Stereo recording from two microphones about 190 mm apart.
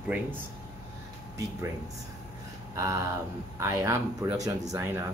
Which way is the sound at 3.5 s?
15° right (ahead or behind).